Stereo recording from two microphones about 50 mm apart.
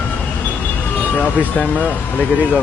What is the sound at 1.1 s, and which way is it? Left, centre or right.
Speech, left.